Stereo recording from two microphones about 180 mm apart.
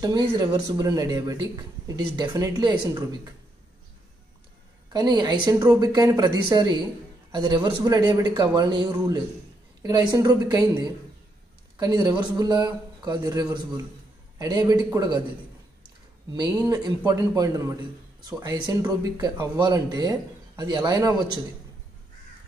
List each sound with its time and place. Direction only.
0.0 s speech: 20° right (ahead or behind)
4.9 s speech: 25° right (ahead or behind)
11.8 s speech: 20° right (ahead or behind)
16.5 s speech: 20° right (ahead or behind)